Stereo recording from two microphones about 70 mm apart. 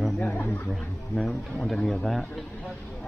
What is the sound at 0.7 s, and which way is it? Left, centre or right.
Speech, centre.